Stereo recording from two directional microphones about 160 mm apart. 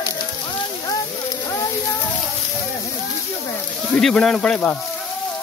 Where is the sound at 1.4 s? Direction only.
20° left (ahead or behind).